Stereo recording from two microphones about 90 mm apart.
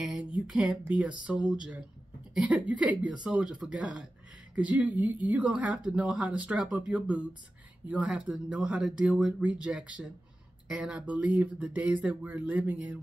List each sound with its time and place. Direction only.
0.0 s speech: 10° right (ahead or behind)